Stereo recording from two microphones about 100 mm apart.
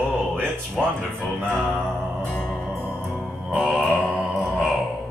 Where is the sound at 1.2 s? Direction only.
10° left (ahead or behind).